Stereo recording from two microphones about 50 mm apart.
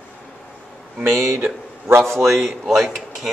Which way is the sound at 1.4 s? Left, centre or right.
Right.